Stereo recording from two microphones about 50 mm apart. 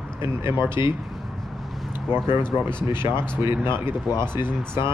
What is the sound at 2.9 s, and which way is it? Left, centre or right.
Speech, right.